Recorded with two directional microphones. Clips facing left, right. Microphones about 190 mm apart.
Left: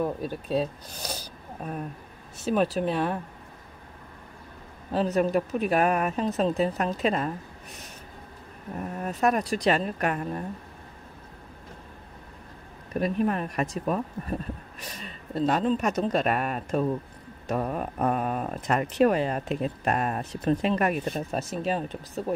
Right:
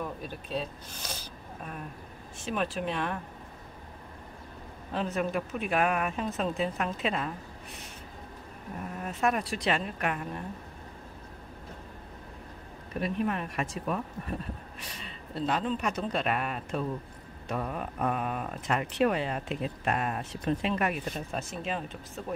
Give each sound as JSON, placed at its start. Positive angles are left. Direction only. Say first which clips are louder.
{"t": 0.0, "sound": "speech", "louder": "left 8 dB", "side_deg": 40}
{"t": 4.9, "sound": "speech", "louder": "left 7 dB", "side_deg": 40}
{"t": 9.0, "sound": "speech", "louder": "left 4 dB", "side_deg": 40}
{"t": 13.0, "sound": "speech", "louder": "left 4 dB", "side_deg": 40}